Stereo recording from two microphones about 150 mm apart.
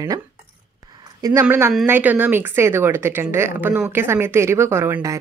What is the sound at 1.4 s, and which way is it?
Speech, 15° right (ahead or behind).